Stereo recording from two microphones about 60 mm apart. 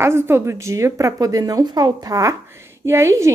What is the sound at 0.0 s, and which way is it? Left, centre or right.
A woman's voice, right.